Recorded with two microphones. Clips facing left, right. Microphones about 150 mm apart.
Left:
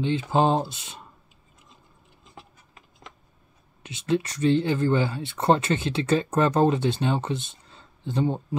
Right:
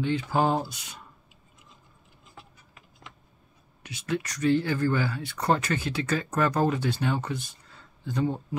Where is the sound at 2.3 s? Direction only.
35° left (ahead or behind).